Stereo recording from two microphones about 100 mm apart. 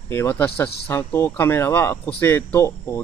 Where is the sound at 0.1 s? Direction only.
20° left (ahead or behind).